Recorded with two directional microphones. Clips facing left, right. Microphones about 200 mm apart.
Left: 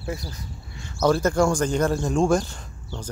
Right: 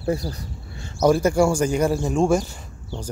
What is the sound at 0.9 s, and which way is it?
Speech, 15° right (ahead or behind).